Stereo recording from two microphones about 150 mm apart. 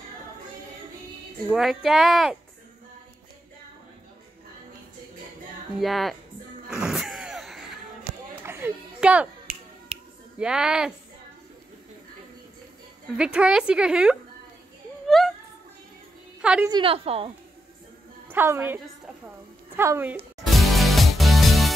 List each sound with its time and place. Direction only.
1.5 s a woman's voice: centre (ahead or behind)
5.8 s a woman's voice: centre (ahead or behind)
6.7 s a sound: 5° right (ahead or behind)
8.5 s a sound: 15° right (ahead or behind)
9.9 s finger snapping: 45° right (ahead or behind)
10.4 s a woman's voice: 5° right (ahead or behind)
13.2 s a woman's voice: 5° right (ahead or behind)
15.0 s a sound: centre (ahead or behind)
16.3 s a sound: 5° right (ahead or behind)
16.6 s a woman's voice: 35° right (ahead or behind)
18.3 s a woman's voice: 15° right (ahead or behind)
20.4 s music: centre (ahead or behind)